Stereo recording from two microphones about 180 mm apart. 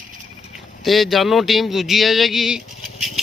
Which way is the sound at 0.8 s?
Centre (ahead or behind).